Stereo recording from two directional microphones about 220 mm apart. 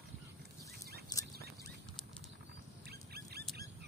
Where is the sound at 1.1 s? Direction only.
20° left (ahead or behind).